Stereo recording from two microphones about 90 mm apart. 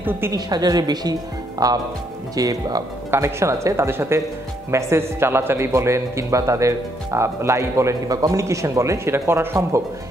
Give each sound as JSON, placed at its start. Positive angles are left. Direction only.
{"t": 0.3, "sound": "speech", "side_deg": -45}
{"t": 3.1, "sound": "speech", "side_deg": -30}